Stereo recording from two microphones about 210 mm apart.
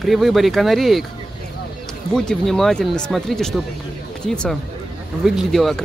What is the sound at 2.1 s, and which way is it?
Speech, centre (ahead or behind).